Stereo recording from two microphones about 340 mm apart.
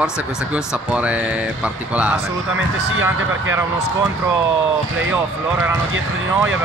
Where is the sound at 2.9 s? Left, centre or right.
Right.